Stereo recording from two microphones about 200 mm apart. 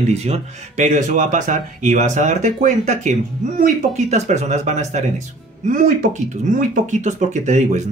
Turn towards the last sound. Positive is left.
turn(degrees=-35)  # may be behind; listen again after turning